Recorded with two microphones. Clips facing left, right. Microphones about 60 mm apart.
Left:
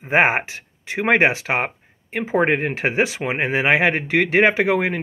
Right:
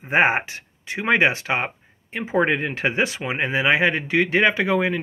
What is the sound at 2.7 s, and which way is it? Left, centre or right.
Speech, left.